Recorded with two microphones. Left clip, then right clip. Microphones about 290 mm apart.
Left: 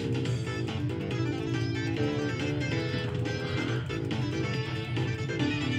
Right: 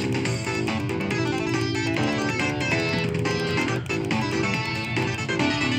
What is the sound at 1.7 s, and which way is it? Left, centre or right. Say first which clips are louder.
Music: right 7 dB; right.